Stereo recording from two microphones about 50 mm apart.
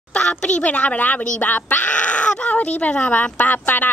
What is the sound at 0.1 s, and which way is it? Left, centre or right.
A woman's voice, centre.